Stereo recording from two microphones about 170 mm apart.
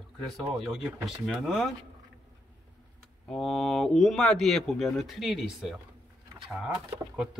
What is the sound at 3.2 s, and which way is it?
Speech, 5° left (ahead or behind).